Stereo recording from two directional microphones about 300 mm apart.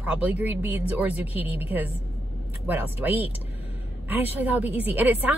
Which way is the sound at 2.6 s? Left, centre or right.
Centre.